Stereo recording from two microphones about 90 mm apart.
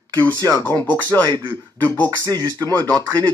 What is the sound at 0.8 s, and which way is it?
Speech, 20° left (ahead or behind).